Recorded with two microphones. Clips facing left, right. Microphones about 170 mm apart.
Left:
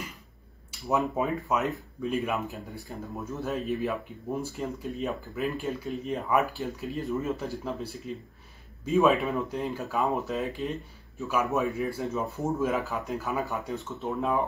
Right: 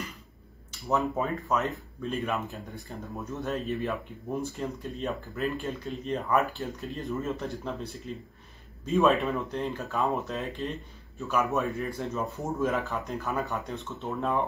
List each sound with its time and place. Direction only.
0.8 s speech: 15° left (ahead or behind)
2.0 s speech: centre (ahead or behind)